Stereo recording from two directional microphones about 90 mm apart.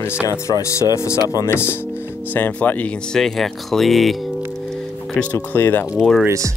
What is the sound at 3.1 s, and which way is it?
Speech, 5° left (ahead or behind).